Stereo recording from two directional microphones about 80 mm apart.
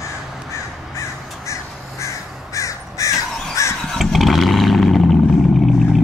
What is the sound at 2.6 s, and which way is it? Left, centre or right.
Crow, left.